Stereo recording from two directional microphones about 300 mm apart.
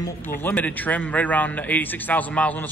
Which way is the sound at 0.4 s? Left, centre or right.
Centre.